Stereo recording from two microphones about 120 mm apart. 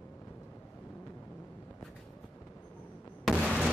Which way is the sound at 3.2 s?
5° right (ahead or behind).